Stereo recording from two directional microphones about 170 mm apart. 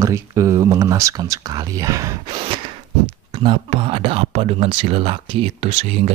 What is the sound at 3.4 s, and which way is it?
Speech, 30° right (ahead or behind).